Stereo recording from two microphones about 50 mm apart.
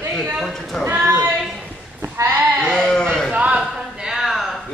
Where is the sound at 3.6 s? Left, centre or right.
Centre.